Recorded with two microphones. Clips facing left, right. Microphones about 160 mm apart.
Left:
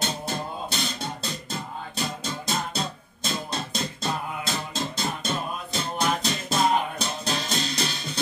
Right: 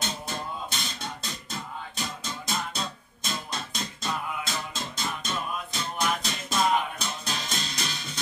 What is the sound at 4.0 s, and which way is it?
Music, 30° left (ahead or behind).